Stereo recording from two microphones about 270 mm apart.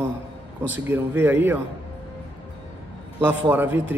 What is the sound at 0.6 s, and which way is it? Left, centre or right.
A man's voice, centre.